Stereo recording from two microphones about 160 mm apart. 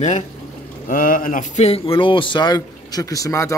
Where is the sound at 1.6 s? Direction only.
35° left (ahead or behind).